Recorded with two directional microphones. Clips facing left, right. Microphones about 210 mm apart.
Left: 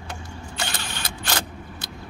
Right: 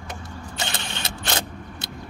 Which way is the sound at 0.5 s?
25° right (ahead or behind).